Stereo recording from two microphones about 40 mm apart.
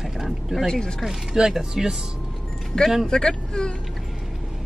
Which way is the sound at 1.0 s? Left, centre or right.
Centre.